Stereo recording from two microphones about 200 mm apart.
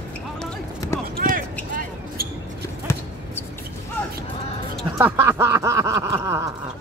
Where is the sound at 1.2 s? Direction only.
45° right (ahead or behind).